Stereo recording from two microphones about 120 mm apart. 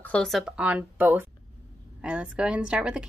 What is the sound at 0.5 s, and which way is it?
A woman's voice, 10° right (ahead or behind).